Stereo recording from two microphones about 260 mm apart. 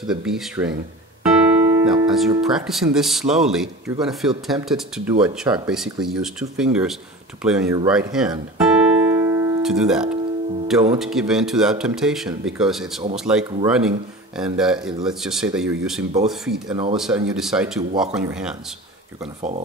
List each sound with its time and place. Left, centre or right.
0.0 s speech: centre
1.2 s music: centre
2.4 s speech: centre
8.5 s music: centre
9.7 s speech: centre
16.6 s speech: centre
16.9 s speech: centre